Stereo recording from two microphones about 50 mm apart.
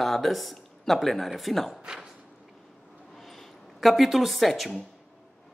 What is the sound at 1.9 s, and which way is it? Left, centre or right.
Speech, centre.